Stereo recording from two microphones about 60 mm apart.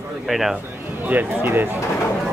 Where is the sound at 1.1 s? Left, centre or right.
Right.